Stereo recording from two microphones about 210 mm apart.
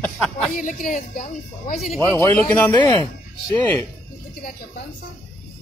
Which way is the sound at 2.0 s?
10° left (ahead or behind).